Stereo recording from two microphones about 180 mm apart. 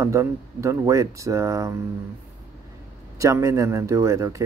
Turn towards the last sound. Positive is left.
turn(degrees=-15)  # may be behind; listen again after turning